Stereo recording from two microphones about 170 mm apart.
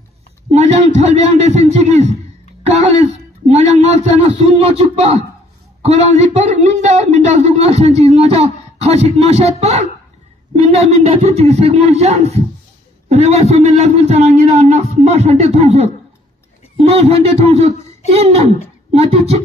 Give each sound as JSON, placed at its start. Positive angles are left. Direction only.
{"t": 0.5, "sound": "a man's voice", "side_deg": -40}